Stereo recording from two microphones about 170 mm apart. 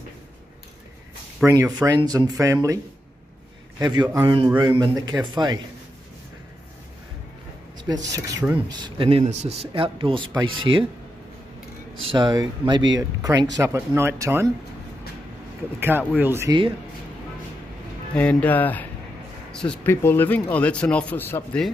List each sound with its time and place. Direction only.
1.4 s speech: 20° right (ahead or behind)
3.8 s speech: 25° right (ahead or behind)
7.7 s speech: 25° right (ahead or behind)
12.1 s speech: 25° right (ahead or behind)
15.8 s speech: 10° right (ahead or behind)
18.1 s speech: 5° left (ahead or behind)